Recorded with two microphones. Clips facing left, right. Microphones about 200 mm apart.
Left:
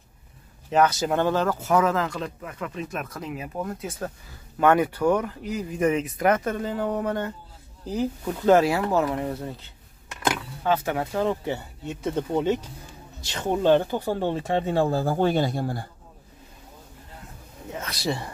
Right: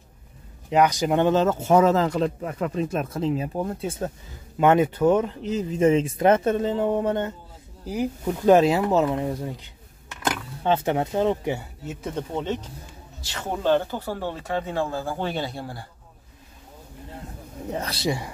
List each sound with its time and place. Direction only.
0.7 s speech: 15° right (ahead or behind)
7.8 s speech: 10° right (ahead or behind)
10.6 s speech: 25° right (ahead or behind)
11.8 s speech: centre (ahead or behind)
12.4 s speech: 10° left (ahead or behind); by 15.8 s 45° left (ahead or behind)
17.6 s speech: 35° right (ahead or behind)
18.0 s speech: 10° right (ahead or behind)